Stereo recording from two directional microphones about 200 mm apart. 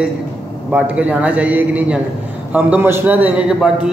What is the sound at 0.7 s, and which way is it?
A man's voice, 5° right (ahead or behind).